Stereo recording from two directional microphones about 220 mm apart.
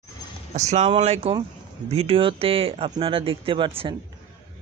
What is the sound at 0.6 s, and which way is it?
Speech, 30° right (ahead or behind).